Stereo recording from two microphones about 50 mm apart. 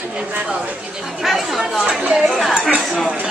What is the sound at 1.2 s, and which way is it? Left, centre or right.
Chatter, centre.